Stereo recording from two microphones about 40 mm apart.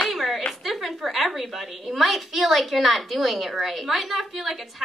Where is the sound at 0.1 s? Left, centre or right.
Centre.